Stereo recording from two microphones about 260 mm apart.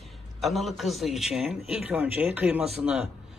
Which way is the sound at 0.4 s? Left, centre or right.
Centre.